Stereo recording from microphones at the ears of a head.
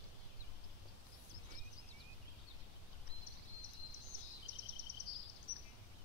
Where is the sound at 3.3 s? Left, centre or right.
Left.